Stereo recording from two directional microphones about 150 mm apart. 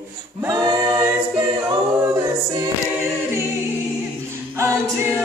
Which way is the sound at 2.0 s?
25° right (ahead or behind).